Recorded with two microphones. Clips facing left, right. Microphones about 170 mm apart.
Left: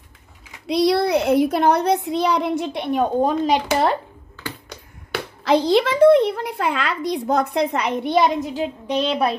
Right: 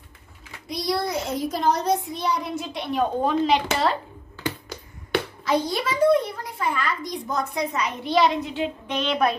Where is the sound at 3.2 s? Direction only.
45° left (ahead or behind).